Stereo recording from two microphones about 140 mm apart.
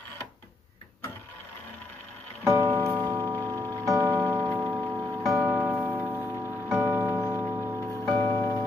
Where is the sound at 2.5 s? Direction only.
25° right (ahead or behind).